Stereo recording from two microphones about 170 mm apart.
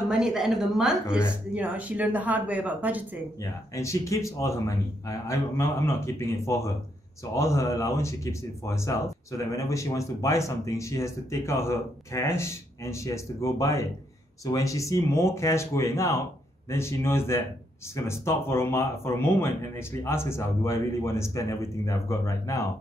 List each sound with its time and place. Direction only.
0.1 s speech: centre (ahead or behind)
3.7 s speech: 15° left (ahead or behind)